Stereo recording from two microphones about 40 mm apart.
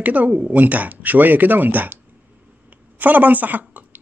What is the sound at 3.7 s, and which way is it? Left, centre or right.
Cough, right.